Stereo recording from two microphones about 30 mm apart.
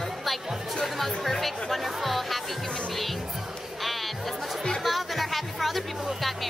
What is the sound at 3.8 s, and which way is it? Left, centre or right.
Music, centre.